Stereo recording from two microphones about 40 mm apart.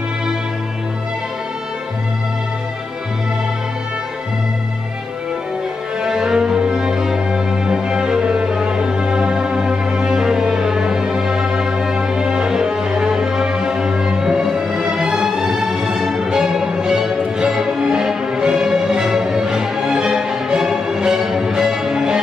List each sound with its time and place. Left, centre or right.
6.0 s music: centre